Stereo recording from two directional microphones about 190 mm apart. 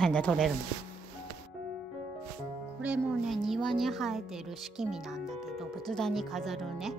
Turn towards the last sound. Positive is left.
turn(degrees=0)  # may be behind; listen again after turning